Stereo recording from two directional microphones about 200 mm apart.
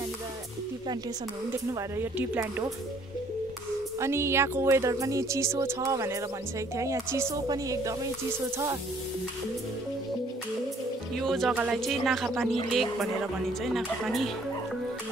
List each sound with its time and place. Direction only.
1.5 s speech: 10° right (ahead or behind)
4.0 s speech: 15° right (ahead or behind)
11.1 s speech: centre (ahead or behind)